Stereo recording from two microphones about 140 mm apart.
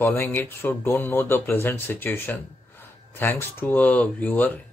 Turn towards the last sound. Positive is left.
turn(degrees=10)  # may be behind; listen again after turning